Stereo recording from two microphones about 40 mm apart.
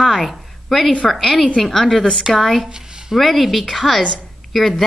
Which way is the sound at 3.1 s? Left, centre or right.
Centre.